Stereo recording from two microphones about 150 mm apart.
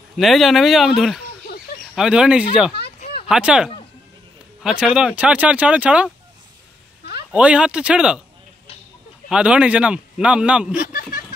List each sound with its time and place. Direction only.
0.2 s a man's voice: centre (ahead or behind)
7.2 s a man's voice: 5° right (ahead or behind)
9.3 s a man's voice: 5° right (ahead or behind)
10.8 s a sound: 75° left (ahead or behind)